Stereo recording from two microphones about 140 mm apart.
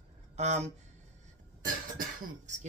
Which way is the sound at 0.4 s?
55° right (ahead or behind).